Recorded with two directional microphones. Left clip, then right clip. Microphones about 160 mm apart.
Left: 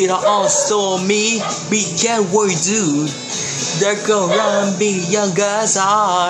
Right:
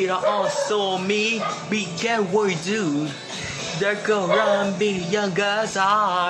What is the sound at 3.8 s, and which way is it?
Speech, 20° left (ahead or behind).